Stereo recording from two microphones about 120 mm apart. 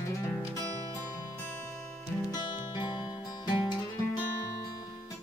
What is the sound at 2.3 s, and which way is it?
Music, 40° left (ahead or behind).